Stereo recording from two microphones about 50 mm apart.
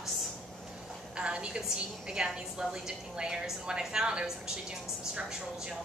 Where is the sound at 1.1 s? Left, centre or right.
Right.